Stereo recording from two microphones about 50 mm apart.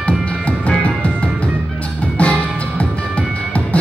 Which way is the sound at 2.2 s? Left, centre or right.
Left.